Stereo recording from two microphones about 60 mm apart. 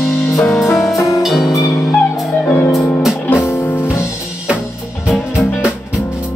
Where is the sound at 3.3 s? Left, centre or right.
Left.